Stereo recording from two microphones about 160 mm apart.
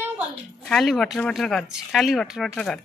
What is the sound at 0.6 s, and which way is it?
Speech, 5° left (ahead or behind).